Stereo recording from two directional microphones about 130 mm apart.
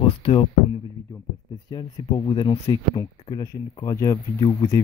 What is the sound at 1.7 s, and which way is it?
Speech, 35° left (ahead or behind).